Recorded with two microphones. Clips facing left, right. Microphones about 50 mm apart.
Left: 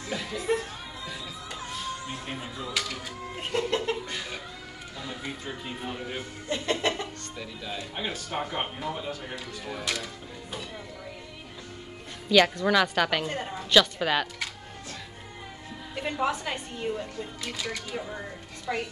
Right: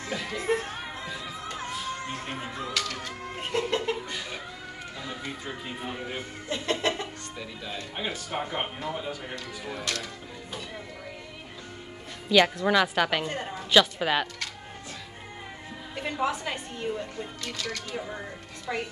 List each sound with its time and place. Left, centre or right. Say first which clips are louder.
0.1 s speech: even; centre
0.4 s speech: even; right
2.3 s speech: right 2 dB; right
2.7 s speech: left 1 dB; centre
3.3 s laughter: even; centre
4.9 s speech: left 1 dB; centre
6.5 s speech: even; centre
12.3 s speech: even; centre
15.9 s speech: left 1 dB; centre
18.7 s speech: left 1 dB; centre